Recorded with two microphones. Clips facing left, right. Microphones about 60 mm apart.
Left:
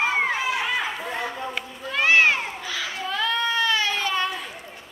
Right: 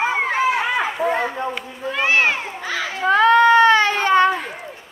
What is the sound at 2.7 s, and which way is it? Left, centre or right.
Baby cry, right.